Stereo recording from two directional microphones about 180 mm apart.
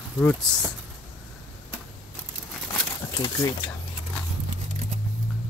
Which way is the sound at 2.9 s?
20° left (ahead or behind).